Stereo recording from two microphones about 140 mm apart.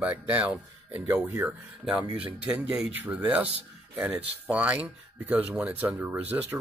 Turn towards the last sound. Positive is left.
turn(degrees=-10)  # may be behind; listen again after turning